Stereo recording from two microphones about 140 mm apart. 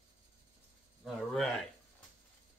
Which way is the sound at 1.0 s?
5° left (ahead or behind).